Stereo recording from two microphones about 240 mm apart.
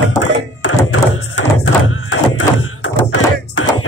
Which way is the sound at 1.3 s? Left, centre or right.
Left.